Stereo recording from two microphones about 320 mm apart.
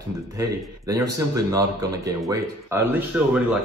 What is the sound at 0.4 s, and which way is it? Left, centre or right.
Speech, centre.